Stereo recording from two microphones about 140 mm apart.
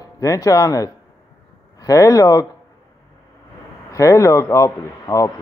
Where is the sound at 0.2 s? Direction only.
25° left (ahead or behind).